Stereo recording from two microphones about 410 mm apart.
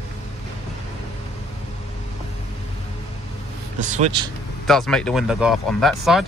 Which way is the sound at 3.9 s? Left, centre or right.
Centre.